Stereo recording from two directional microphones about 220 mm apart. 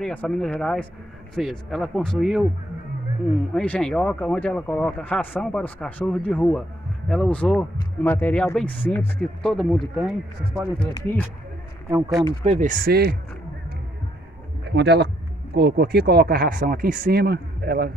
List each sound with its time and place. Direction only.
0.0 s speech: 5° left (ahead or behind)
11.9 s speech: 15° right (ahead or behind)
12.4 s speech: 35° right (ahead or behind)
14.8 s speech: 50° right (ahead or behind)